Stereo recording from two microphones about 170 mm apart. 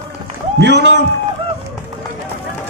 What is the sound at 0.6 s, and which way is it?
Speech, 90° right.